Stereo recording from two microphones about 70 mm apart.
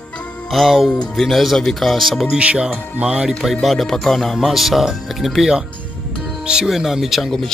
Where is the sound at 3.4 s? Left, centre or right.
Centre.